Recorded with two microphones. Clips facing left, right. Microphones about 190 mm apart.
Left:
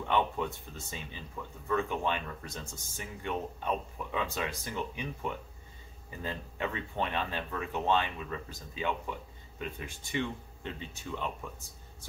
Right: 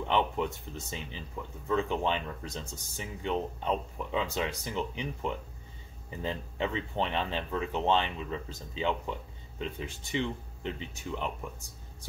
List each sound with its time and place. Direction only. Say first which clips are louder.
0.1 s speech: right 1 dB; 20° right (ahead or behind)